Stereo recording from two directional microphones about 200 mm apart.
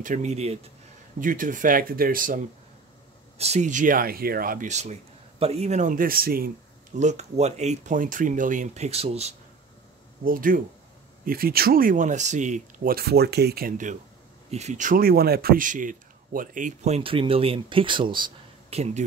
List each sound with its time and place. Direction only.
0.0 s speech: 40° right (ahead or behind)
7.0 s speech: 35° right (ahead or behind)
10.2 s speech: 45° right (ahead or behind)